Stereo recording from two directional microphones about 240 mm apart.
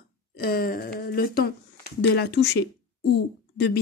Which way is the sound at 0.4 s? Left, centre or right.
Left.